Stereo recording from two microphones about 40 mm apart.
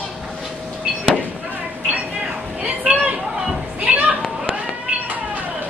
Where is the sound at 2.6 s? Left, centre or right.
Right.